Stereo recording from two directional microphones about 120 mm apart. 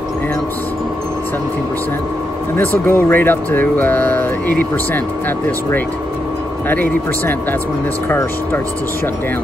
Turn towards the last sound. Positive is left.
turn(degrees=15)  # may be behind; listen again after turning